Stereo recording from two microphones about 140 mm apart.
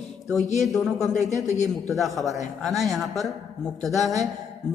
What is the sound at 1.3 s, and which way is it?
Speech, 25° right (ahead or behind).